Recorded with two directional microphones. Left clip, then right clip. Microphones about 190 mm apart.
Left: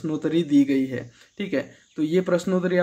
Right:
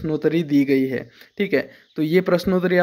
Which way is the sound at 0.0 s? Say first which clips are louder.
Right 3 dB; 30° right (ahead or behind).